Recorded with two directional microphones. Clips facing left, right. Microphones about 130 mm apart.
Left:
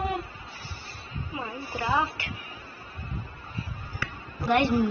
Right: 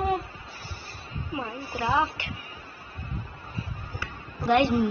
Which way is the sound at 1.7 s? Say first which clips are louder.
Right 2 dB; 15° right (ahead or behind).